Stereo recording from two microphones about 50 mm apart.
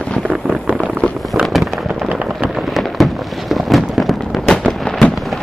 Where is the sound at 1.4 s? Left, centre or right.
Centre.